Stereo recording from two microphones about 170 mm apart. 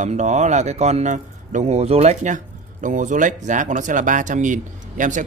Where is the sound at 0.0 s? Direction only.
45° right (ahead or behind).